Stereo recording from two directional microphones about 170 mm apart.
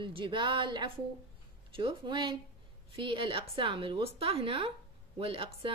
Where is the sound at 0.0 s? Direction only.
30° right (ahead or behind).